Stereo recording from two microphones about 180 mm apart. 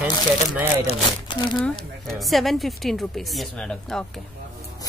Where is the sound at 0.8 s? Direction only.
25° left (ahead or behind).